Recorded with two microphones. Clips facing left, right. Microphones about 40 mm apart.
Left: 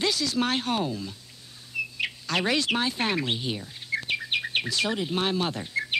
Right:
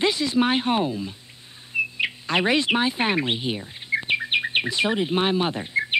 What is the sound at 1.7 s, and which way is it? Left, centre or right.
Chirp, right.